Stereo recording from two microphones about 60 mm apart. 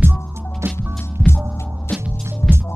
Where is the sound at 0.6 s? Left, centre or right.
Right.